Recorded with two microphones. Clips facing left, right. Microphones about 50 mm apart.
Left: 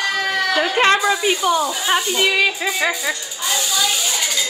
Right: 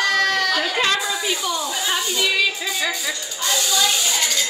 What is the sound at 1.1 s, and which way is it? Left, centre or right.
Speech, left.